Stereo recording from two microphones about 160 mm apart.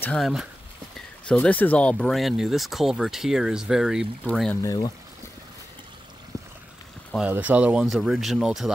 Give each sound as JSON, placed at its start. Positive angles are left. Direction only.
{"t": 0.0, "sound": "speech", "side_deg": 5}
{"t": 4.3, "sound": "speech", "side_deg": 5}
{"t": 4.6, "sound": "speech", "side_deg": 25}
{"t": 7.2, "sound": "speech", "side_deg": -10}